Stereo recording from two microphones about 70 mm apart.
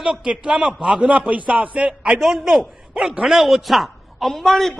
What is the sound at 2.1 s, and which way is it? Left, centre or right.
A man's voice, centre.